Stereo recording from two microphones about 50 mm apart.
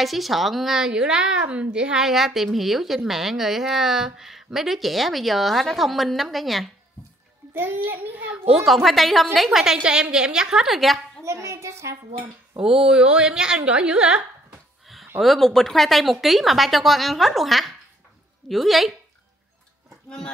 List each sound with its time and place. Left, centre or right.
0.0 s a woman's voice: centre
7.5 s a child's voice: right
8.5 s a woman's voice: centre
10.7 s a woman's voice: centre
11.2 s a sound: right
12.5 s a woman's voice: centre
15.1 s a woman's voice: centre